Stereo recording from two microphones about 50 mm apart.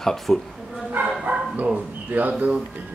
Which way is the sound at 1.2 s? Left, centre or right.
Right.